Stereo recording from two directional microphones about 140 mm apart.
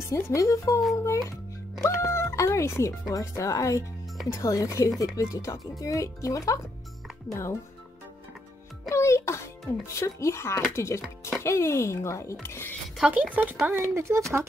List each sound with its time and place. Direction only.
0.1 s speech: 25° left (ahead or behind)
8.8 s music: 20° left (ahead or behind)
9.9 s speech: 20° left (ahead or behind)
11.0 s a child's voice: 5° right (ahead or behind)
11.4 s speech: 20° left (ahead or behind)
12.9 s speech: 10° right (ahead or behind)